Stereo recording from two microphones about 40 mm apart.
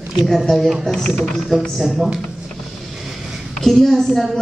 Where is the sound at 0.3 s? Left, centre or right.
Centre.